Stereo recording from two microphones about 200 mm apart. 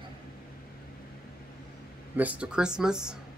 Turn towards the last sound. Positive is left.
turn(degrees=-5)  # may be behind; listen again after turning